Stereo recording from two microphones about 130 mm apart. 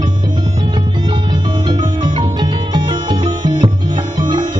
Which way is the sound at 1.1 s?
35° right (ahead or behind).